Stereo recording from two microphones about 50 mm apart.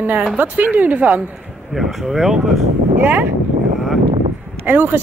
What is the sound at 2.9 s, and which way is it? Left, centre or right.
Speech, right.